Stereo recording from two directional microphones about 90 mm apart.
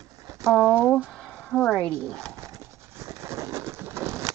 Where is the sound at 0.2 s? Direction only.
35° right (ahead or behind).